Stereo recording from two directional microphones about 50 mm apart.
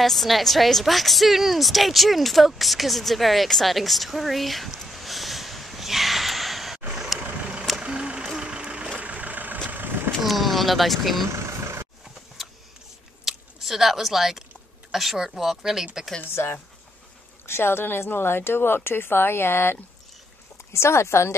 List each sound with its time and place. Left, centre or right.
0.0 s a woman's voice: centre
7.8 s vehicle: centre
9.0 s vehicle: right
10.2 s vehicle: centre
11.3 s vehicle: right
13.2 s a sound: centre
14.9 s speech: centre
17.5 s a woman's voice: left
20.7 s speech: left